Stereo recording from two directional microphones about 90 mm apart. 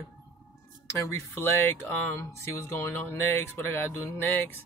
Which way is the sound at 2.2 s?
30° left (ahead or behind).